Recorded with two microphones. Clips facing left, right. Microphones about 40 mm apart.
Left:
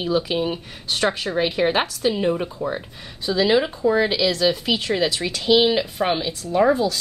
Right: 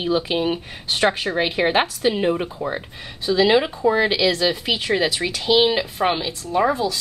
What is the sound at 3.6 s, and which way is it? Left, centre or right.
Speech, centre.